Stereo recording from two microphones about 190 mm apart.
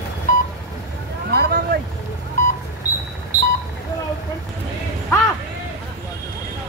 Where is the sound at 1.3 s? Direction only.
55° right (ahead or behind).